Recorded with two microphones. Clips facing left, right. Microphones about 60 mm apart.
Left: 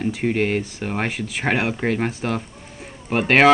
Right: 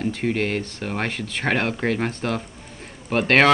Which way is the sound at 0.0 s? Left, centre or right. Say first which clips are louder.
Left 2 dB; centre.